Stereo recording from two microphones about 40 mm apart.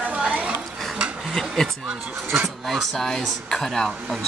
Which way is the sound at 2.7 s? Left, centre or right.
Centre.